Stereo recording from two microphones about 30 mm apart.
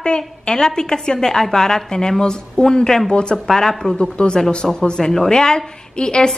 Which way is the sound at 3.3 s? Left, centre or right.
Centre.